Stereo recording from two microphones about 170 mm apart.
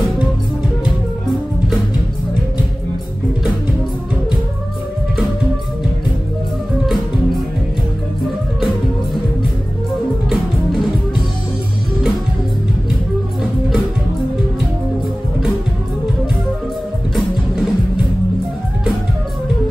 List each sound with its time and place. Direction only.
10.3 s music: centre (ahead or behind)